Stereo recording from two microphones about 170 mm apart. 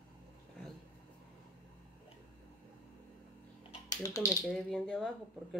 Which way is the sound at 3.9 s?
20° left (ahead or behind).